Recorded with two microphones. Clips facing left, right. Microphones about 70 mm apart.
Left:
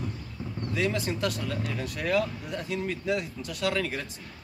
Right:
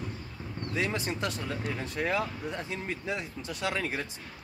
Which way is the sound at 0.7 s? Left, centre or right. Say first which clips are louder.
Left 3 dB; right.